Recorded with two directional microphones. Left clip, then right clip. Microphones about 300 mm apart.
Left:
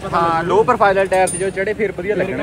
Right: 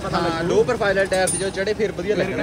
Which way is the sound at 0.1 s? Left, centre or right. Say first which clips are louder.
Left 6 dB; centre.